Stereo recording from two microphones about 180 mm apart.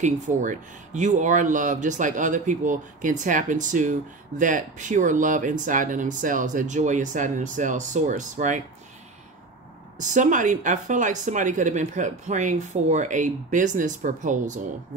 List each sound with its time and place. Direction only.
0.0 s speech: 45° right (ahead or behind)
9.9 s speech: 45° right (ahead or behind)